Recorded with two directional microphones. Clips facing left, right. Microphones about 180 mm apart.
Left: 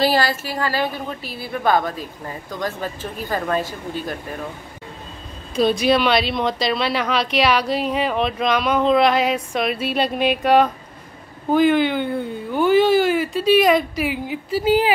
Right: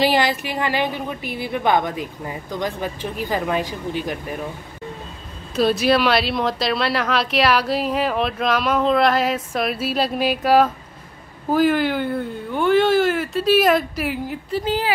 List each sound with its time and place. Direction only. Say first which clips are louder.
0.0 s a woman's voice: even; 20° right (ahead or behind)
5.6 s a woman's voice: even; 5° right (ahead or behind)